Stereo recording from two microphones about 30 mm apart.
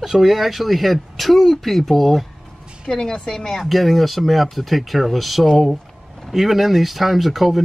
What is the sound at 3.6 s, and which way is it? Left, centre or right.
Speech, centre.